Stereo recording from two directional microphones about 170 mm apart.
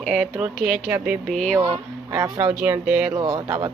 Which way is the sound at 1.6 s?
20° right (ahead or behind).